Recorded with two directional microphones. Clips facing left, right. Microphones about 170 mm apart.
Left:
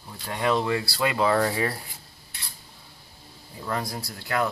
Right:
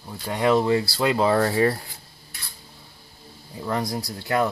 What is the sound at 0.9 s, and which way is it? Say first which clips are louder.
Speech: left 1 dB; 25° right (ahead or behind).